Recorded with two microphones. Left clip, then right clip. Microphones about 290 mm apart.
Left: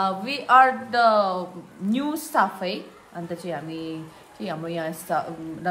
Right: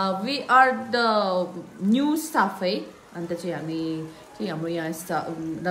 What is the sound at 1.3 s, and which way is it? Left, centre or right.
Speech, centre.